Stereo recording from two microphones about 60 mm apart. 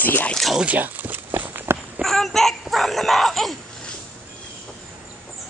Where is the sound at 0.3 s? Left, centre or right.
Centre.